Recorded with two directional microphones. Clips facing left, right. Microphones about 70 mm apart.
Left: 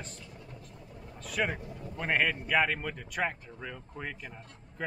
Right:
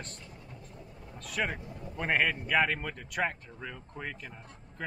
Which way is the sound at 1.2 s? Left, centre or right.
Centre.